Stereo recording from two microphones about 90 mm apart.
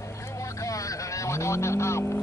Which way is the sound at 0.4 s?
35° left (ahead or behind).